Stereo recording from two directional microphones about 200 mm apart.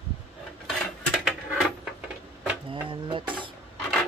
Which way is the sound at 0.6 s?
Centre (ahead or behind).